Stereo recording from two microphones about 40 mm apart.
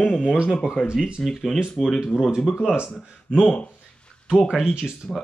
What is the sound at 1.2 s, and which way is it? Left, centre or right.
Speech, centre.